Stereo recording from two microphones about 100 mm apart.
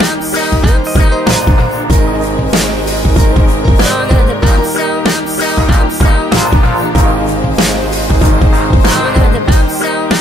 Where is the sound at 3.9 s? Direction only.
Centre (ahead or behind).